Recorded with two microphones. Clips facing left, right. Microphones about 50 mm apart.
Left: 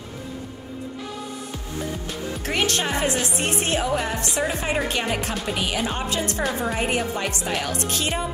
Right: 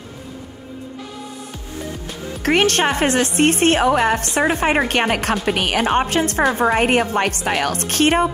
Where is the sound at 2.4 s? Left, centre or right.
Right.